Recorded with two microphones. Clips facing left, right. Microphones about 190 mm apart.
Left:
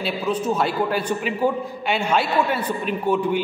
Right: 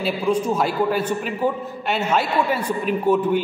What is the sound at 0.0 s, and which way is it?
A man's voice, 10° right (ahead or behind).